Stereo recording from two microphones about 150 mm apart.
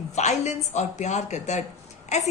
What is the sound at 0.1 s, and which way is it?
A woman's voice, 50° left (ahead or behind).